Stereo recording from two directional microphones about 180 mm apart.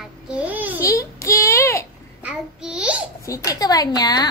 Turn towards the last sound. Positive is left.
turn(degrees=20)  # may be behind; listen again after turning